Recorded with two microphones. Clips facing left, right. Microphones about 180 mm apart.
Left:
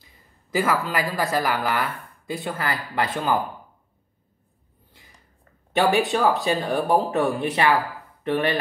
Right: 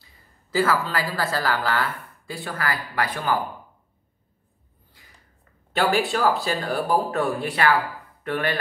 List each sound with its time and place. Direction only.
0.0 s speech: 15° left (ahead or behind)
5.8 s speech: 20° left (ahead or behind)